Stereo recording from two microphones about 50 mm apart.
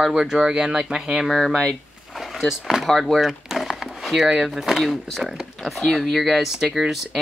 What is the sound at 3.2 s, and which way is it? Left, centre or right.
Speech, centre.